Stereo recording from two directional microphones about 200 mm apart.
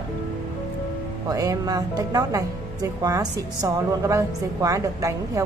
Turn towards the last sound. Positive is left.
turn(degrees=-15)  # may be behind; listen again after turning